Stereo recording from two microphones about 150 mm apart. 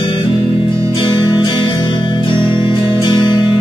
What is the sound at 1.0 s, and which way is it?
Music, 30° left (ahead or behind).